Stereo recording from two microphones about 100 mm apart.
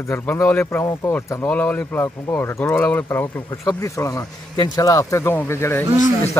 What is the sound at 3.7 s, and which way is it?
Speech, 35° left (ahead or behind).